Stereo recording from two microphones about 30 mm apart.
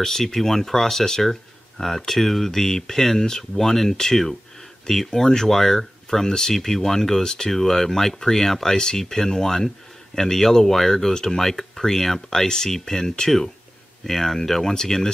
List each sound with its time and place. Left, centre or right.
0.0 s speech: centre